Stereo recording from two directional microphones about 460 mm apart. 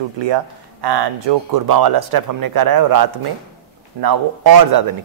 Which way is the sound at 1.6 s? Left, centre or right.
Right.